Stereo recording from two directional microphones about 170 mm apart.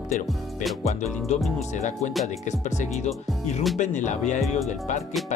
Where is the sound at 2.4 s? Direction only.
45° left (ahead or behind).